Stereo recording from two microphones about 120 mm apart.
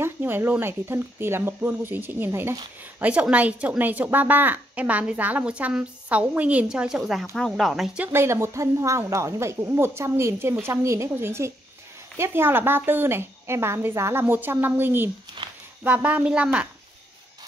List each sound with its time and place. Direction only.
0.0 s a woman's voice: 20° right (ahead or behind); by 8.0 s centre (ahead or behind)
8.0 s a woman's voice: 20° right (ahead or behind)